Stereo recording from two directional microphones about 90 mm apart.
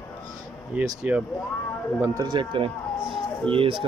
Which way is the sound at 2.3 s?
65° right (ahead or behind).